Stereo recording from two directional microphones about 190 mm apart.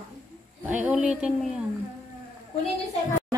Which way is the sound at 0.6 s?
5° right (ahead or behind).